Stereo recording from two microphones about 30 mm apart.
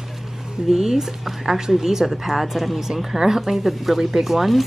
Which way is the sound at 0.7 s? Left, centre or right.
Centre.